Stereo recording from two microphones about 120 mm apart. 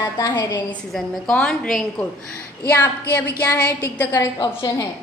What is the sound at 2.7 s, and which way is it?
Speech, 15° left (ahead or behind).